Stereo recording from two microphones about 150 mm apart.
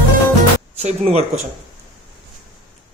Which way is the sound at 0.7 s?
45° right (ahead or behind).